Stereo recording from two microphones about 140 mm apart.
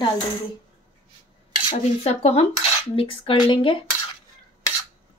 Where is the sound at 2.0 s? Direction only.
50° left (ahead or behind).